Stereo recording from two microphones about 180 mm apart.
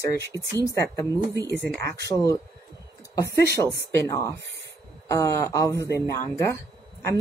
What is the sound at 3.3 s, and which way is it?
Speech, 60° right (ahead or behind).